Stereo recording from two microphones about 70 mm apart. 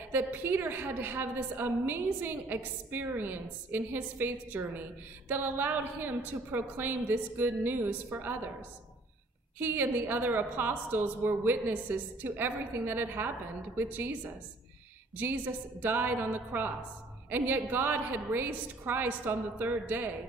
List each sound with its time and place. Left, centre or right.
0.1 s a woman's voice: right
9.6 s a woman's voice: right